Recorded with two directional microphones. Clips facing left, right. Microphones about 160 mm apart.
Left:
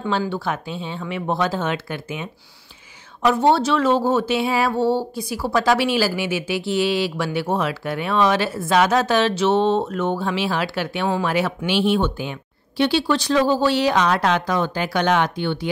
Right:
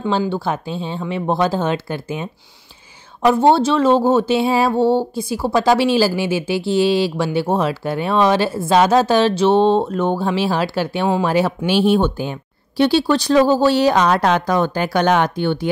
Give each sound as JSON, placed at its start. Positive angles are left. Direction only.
{"t": 0.0, "sound": "speech", "side_deg": -25}
{"t": 3.3, "sound": "speech", "side_deg": -30}